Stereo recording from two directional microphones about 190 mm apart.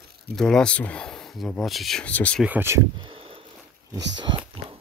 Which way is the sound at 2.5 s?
10° right (ahead or behind).